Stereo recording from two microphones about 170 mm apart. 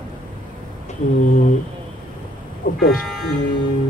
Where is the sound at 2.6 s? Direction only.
55° left (ahead or behind).